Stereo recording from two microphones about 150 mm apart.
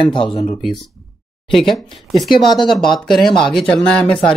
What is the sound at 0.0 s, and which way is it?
Speech, 30° left (ahead or behind).